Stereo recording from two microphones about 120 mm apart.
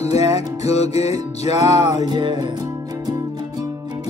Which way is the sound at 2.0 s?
40° right (ahead or behind).